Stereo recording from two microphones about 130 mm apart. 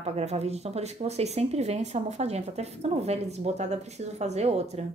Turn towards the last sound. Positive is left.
turn(degrees=-55)  # may be behind; listen again after turning